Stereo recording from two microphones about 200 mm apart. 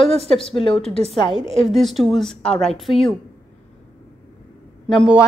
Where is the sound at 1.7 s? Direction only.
Centre (ahead or behind).